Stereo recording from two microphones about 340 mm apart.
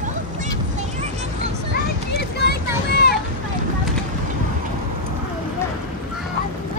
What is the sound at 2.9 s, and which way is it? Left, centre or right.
Boat, left.